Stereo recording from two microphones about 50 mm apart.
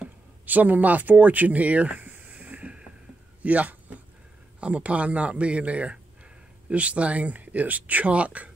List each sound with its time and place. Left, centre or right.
0.5 s speech: right